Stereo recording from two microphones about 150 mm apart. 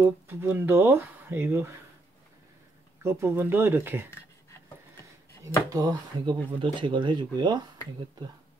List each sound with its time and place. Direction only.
0.0 s speech: 15° right (ahead or behind)
3.0 s speech: 15° right (ahead or behind)
5.7 s speech: 25° right (ahead or behind)